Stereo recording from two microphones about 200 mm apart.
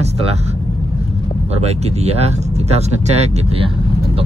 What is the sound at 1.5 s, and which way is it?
Speech, 30° right (ahead or behind).